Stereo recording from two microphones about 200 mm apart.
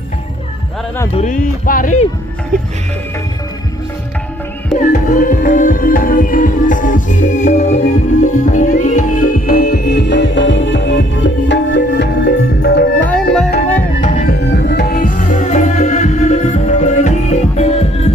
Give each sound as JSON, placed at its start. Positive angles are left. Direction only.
{"t": 1.1, "sound": "speech", "side_deg": 40}
{"t": 4.7, "sound": "music", "side_deg": 40}
{"t": 14.0, "sound": "music", "side_deg": 40}
{"t": 14.5, "sound": "music", "side_deg": 60}